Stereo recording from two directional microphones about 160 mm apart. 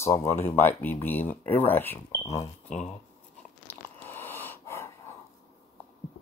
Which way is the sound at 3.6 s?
15° left (ahead or behind).